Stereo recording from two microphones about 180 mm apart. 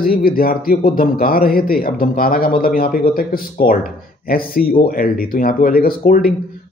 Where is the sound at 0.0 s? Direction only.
55° left (ahead or behind).